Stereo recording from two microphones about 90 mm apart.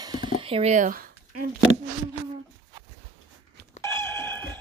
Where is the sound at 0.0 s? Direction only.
45° right (ahead or behind).